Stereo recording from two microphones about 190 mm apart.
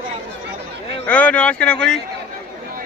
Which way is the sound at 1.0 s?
5° left (ahead or behind).